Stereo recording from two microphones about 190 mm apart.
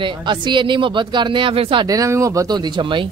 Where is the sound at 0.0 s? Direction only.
25° right (ahead or behind).